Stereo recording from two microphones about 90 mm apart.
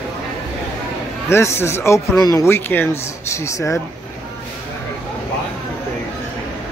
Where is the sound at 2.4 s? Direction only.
25° left (ahead or behind).